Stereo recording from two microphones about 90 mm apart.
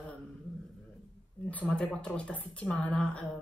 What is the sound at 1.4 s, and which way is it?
A woman's voice, 15° left (ahead or behind).